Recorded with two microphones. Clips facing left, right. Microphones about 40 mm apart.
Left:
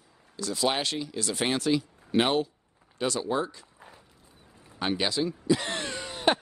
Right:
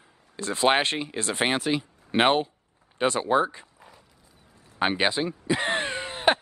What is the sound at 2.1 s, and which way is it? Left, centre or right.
Speech, right.